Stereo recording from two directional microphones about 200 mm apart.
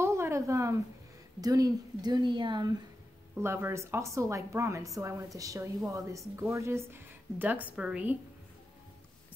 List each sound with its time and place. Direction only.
0.0 s a sound: 15° right (ahead or behind)
1.4 s speech: 20° right (ahead or behind)
3.3 s speech: 10° right (ahead or behind)